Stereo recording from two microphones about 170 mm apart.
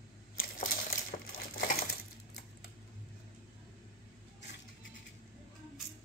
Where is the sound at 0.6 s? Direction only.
55° left (ahead or behind).